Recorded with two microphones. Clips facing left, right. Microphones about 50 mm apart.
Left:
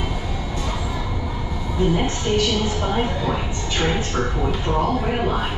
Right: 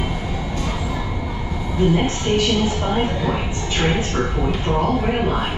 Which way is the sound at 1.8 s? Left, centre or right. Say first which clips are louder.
Right 3 dB; centre.